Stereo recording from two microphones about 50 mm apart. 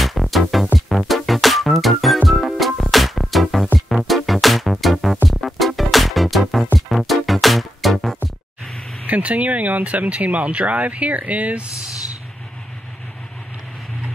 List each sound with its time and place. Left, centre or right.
0.0 s music: centre
9.0 s speech: right